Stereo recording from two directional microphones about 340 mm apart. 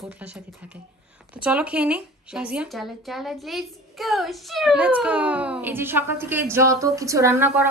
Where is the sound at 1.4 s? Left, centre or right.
Centre.